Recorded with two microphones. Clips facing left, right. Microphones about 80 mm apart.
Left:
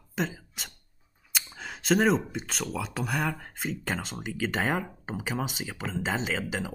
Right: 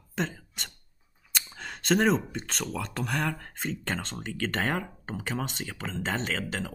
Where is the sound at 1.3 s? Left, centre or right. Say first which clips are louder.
Even; centre.